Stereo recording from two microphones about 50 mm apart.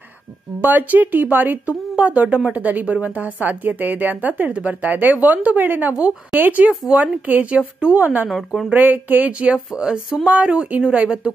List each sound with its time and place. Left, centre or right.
0.6 s a woman's voice: right
1.7 s a woman's voice: right
8.0 s a woman's voice: right
9.8 s speech: centre
10.2 s speech: right